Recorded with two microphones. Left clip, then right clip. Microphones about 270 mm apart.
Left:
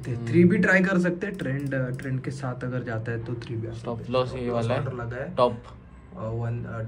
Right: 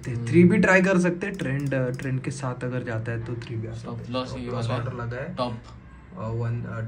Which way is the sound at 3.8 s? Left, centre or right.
Left.